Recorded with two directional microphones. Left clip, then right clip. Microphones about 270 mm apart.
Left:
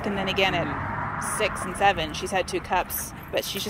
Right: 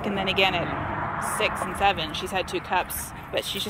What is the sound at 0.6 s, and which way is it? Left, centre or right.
Vehicle, right.